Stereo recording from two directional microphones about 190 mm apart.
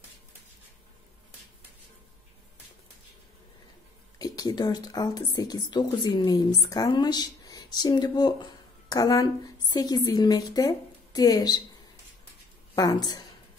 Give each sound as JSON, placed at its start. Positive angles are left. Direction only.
{"t": 4.2, "sound": "speech", "side_deg": 20}
{"t": 12.7, "sound": "a woman's voice", "side_deg": 20}